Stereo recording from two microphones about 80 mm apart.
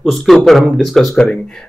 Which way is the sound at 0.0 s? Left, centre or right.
Centre.